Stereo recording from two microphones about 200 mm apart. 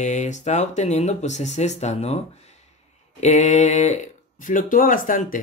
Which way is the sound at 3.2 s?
35° left (ahead or behind).